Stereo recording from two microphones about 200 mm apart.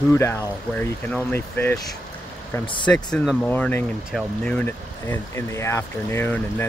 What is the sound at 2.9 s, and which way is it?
Speech, 5° left (ahead or behind).